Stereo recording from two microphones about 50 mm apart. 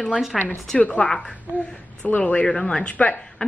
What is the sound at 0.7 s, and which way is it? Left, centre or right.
A woman's voice, left.